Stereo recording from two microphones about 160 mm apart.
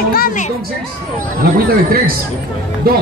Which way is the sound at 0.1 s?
60° left (ahead or behind).